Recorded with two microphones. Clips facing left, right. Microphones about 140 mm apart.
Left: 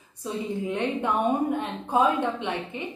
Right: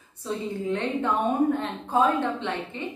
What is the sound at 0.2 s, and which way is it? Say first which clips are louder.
A woman's voice: even; 15° left (ahead or behind).